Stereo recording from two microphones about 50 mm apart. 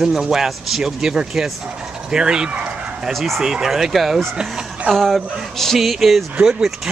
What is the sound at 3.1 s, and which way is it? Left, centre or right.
Speech, centre.